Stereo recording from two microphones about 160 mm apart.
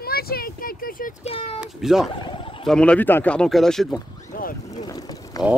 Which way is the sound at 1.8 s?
Centre (ahead or behind).